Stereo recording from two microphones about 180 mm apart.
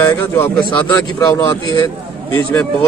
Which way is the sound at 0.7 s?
20° left (ahead or behind).